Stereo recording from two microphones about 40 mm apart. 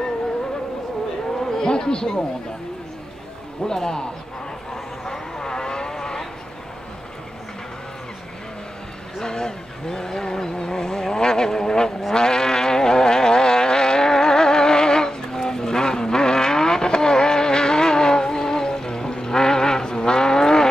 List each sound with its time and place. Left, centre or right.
1.4 s a sound: centre
3.6 s speech: centre
5.0 s vehicle: centre
9.2 s vehicle: centre